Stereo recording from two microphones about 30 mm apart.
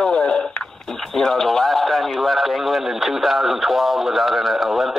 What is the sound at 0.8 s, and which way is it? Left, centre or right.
Speech, centre.